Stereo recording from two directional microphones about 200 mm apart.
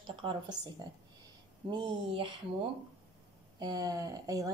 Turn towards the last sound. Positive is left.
turn(degrees=-15)  # may be behind; listen again after turning